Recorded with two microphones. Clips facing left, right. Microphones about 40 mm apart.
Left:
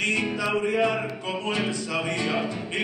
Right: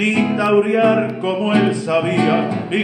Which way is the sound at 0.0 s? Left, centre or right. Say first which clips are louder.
Right 9 dB; centre.